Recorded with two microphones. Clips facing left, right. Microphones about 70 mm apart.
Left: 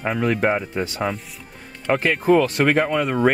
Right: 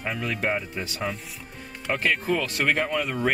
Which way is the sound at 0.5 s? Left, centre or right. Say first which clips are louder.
Left 6 dB; left.